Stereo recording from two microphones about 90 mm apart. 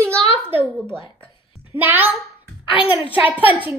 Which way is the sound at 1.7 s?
20° right (ahead or behind).